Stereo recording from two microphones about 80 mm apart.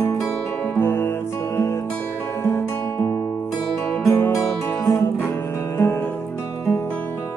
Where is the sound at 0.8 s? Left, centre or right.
Left.